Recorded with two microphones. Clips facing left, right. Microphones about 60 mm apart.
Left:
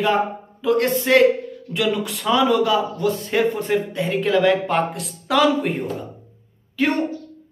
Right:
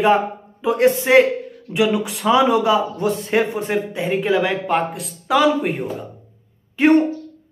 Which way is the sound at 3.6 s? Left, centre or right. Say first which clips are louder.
Even; centre.